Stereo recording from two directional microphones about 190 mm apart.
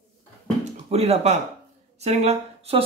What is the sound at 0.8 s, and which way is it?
A man's voice, 30° right (ahead or behind).